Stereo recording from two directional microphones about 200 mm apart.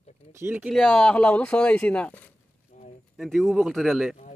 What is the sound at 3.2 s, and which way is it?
Speech, centre (ahead or behind).